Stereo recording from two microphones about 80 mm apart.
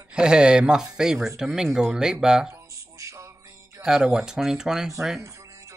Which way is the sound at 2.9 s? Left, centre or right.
Right.